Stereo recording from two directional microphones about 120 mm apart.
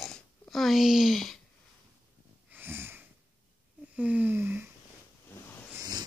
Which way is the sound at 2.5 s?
20° right (ahead or behind).